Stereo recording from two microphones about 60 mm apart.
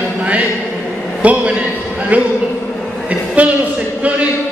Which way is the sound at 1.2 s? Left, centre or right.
Right.